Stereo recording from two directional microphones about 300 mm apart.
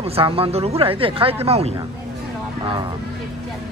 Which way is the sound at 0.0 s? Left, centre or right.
Centre.